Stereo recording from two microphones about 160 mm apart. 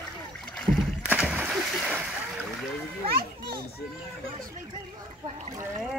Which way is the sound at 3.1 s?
75° right (ahead or behind).